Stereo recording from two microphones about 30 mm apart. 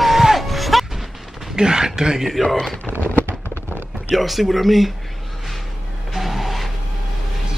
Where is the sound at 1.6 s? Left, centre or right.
Right.